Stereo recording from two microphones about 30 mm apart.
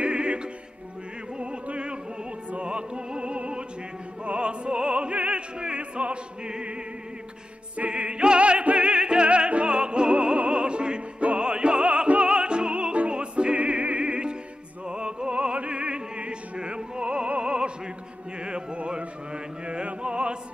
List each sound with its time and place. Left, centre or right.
0.0 s opera: right
1.4 s music: right
2.5 s opera: right
4.2 s music: right
7.9 s music: right
13.1 s opera: right
18.4 s music: right